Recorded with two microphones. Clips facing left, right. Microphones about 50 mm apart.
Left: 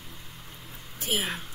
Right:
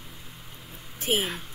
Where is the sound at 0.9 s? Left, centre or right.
Right.